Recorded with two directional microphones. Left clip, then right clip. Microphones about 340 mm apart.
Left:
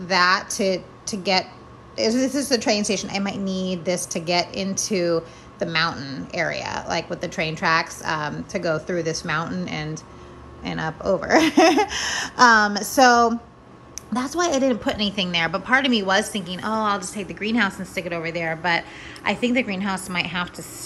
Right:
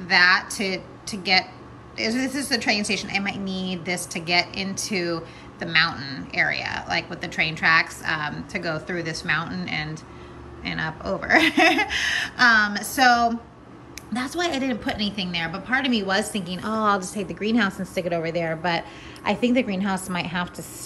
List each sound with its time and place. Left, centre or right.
0.0 s a woman's voice: centre